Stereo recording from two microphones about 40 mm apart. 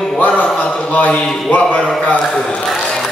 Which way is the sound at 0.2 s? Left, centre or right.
Left.